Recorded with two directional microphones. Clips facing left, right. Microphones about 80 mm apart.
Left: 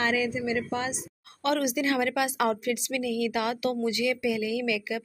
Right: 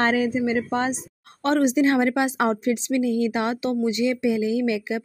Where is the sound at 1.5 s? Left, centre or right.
Right.